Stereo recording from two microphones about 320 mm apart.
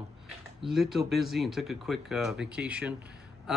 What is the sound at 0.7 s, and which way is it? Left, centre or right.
Speech, centre.